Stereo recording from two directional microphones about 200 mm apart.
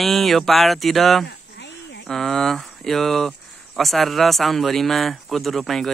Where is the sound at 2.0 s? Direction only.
Centre (ahead or behind).